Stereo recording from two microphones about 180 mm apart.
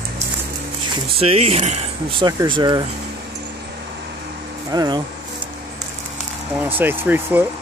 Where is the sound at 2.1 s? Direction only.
25° right (ahead or behind).